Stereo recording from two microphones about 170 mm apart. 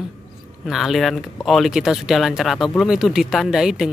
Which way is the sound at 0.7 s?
Centre (ahead or behind).